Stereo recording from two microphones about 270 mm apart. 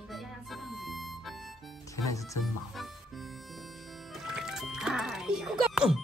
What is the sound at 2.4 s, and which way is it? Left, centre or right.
Harmonica, centre.